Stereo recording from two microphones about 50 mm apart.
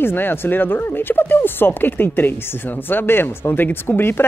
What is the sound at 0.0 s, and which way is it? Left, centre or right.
Speech, left.